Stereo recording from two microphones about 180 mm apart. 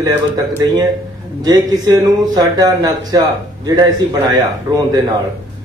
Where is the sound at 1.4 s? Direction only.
20° right (ahead or behind).